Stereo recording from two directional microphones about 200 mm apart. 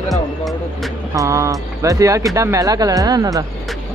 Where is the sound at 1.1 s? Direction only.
15° right (ahead or behind).